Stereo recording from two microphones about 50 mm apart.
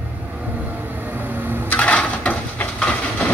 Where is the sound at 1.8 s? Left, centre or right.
Left.